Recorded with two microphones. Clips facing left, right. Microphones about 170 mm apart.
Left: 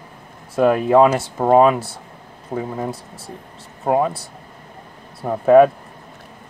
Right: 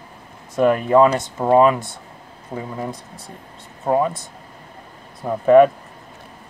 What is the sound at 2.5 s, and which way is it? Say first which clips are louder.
Speech: left 4 dB; 25° left (ahead or behind).